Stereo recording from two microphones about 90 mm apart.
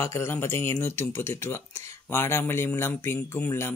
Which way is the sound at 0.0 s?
30° left (ahead or behind).